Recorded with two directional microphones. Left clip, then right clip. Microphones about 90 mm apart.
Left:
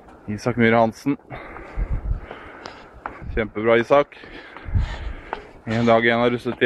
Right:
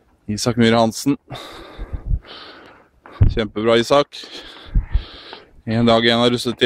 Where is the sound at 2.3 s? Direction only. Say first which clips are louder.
Right 1 dB; 45° right (ahead or behind).